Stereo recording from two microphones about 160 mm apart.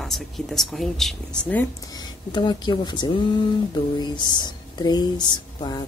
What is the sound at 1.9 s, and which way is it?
Speech, 25° left (ahead or behind).